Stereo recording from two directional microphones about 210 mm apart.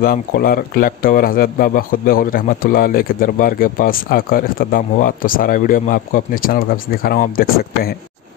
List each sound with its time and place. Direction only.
0.0 s speech: 45° left (ahead or behind)